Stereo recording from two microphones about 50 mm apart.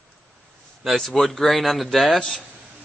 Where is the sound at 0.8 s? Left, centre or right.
Centre.